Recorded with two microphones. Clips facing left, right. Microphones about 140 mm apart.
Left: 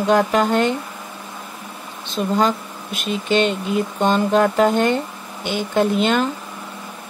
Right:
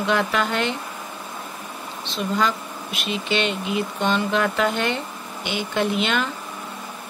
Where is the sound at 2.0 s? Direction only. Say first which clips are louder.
Left 4 dB; 45° left (ahead or behind).